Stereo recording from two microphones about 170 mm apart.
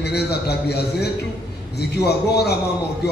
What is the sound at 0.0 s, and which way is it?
A man's voice, 70° left (ahead or behind).